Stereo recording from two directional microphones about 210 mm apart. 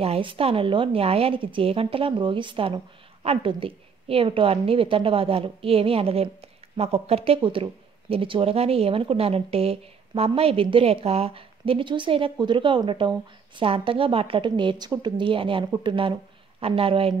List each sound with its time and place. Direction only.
0.0 s a woman's voice: 25° right (ahead or behind)